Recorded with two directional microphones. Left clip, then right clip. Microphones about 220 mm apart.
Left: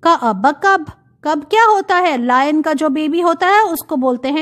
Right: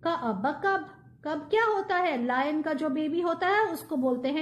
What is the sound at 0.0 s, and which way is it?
A woman's voice, 40° left (ahead or behind).